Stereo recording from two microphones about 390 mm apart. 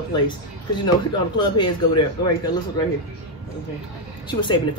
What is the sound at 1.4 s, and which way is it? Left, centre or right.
Speech, centre.